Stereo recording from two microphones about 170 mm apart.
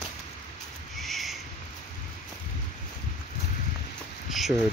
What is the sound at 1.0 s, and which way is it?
Owl, centre (ahead or behind).